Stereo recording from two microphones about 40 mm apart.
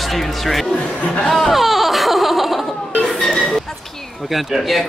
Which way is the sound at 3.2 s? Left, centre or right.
Centre.